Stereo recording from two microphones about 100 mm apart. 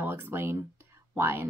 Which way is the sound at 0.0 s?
25° right (ahead or behind).